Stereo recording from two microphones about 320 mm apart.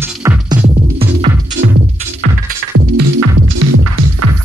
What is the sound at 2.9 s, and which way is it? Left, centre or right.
Music, right.